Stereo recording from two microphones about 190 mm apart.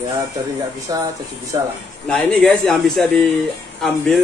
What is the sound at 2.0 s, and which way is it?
Speech, 5° left (ahead or behind).